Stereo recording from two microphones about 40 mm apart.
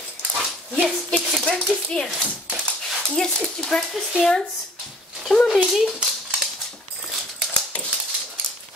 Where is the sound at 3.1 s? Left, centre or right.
Centre.